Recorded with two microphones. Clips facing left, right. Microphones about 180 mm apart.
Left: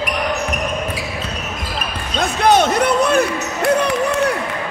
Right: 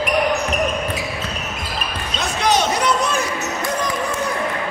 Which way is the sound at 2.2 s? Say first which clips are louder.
Left 5 dB; 55° left (ahead or behind).